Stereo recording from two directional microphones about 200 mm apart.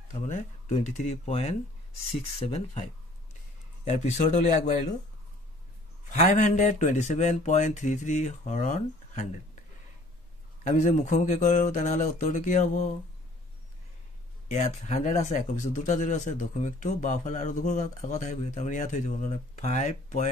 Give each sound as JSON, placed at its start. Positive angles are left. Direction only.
{"t": 0.1, "sound": "speech", "side_deg": 35}
{"t": 3.9, "sound": "speech", "side_deg": 35}
{"t": 6.0, "sound": "speech", "side_deg": 40}
{"t": 10.6, "sound": "speech", "side_deg": 35}
{"t": 14.5, "sound": "speech", "side_deg": 35}